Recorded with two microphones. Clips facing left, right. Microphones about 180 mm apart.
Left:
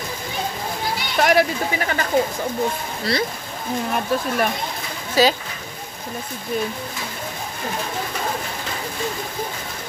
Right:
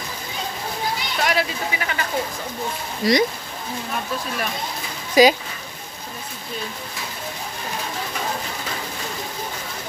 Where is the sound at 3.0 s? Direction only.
15° right (ahead or behind).